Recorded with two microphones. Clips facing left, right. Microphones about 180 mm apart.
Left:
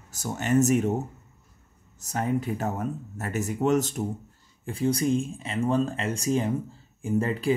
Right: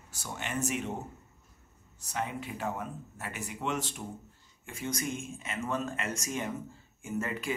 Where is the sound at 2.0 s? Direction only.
45° left (ahead or behind).